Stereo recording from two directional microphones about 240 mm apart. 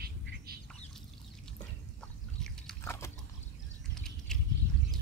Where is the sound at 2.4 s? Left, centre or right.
Centre.